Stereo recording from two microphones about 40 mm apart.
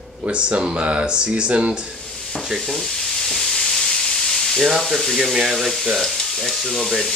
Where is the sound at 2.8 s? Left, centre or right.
Centre.